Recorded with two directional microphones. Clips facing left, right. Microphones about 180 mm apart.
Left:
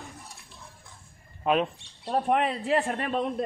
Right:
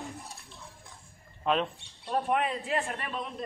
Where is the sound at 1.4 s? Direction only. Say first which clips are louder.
Left 3 dB; 10° left (ahead or behind).